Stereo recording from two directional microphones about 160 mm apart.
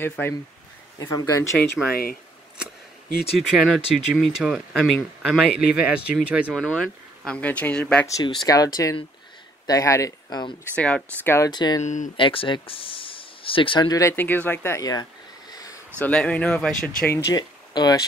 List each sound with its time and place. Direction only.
0.0 s speech: 15° left (ahead or behind)
3.2 s speech: centre (ahead or behind)
5.5 s speech: 90° left
5.8 s speech: 10° right (ahead or behind)
6.5 s speech: 5° left (ahead or behind)
8.2 s speech: 25° left (ahead or behind)
10.7 s speech: 10° left (ahead or behind); by 11.8 s 25° left (ahead or behind)
11.8 s speech: 50° left (ahead or behind)
12.2 s speech: 35° left (ahead or behind)
15.5 s a sound: 25° left (ahead or behind)
16.0 s speech: 5° left (ahead or behind)
17.3 s speech: 25° left (ahead or behind)